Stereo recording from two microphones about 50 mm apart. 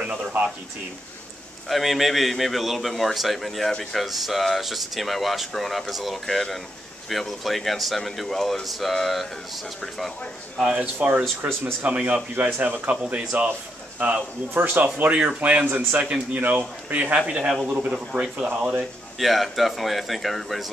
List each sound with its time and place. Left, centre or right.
0.0 s speech: right
1.7 s speech: centre
10.8 s speech: right
12.4 s speech: right
13.1 s speech: right
14.5 s speech: right
15.0 s speech: right
17.5 s speech: centre
17.9 s speech: centre
19.1 s speech: centre